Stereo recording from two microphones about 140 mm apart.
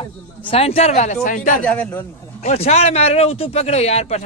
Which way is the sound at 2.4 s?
50° left (ahead or behind).